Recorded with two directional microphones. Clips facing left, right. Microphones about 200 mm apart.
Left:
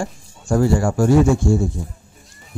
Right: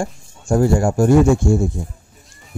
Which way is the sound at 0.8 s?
25° right (ahead or behind).